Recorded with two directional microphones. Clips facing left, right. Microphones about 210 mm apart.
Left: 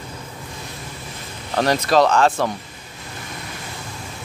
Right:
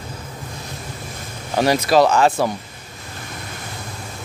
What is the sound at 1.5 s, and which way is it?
Speech, 10° right (ahead or behind).